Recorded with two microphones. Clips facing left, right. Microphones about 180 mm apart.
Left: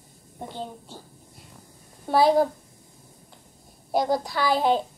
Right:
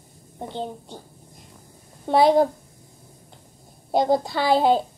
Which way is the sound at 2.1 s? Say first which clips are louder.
Right 2 dB; 25° right (ahead or behind).